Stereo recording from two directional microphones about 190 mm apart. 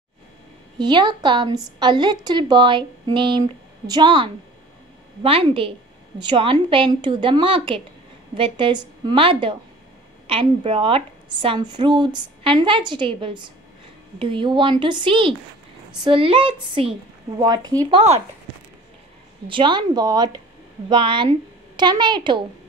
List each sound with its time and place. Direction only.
0.7 s a woman's voice: 25° right (ahead or behind)
19.4 s a woman's voice: 25° right (ahead or behind)